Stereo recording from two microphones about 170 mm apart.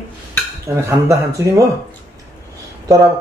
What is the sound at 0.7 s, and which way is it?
Speech, 15° right (ahead or behind).